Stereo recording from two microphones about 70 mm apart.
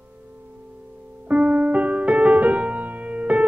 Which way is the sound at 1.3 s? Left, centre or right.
Centre.